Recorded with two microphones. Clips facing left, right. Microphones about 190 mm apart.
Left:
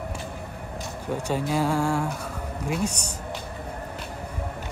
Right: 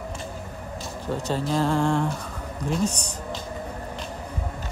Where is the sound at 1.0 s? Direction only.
10° left (ahead or behind).